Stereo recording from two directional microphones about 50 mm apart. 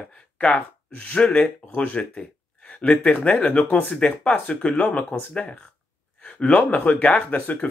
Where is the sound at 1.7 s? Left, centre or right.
Left.